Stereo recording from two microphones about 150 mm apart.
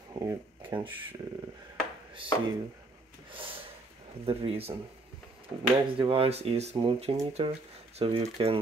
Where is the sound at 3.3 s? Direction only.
35° right (ahead or behind).